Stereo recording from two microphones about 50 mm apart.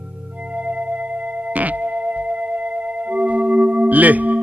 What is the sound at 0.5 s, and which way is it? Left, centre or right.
Music, right.